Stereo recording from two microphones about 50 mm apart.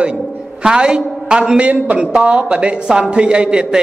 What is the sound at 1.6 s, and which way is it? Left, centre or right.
A woman's voice, right.